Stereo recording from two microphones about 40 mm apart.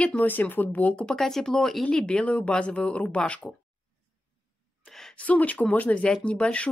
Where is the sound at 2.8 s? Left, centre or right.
Left.